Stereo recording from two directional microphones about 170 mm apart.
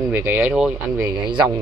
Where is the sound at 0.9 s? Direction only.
25° right (ahead or behind).